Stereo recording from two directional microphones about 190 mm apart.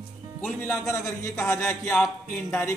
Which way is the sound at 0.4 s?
10° left (ahead or behind).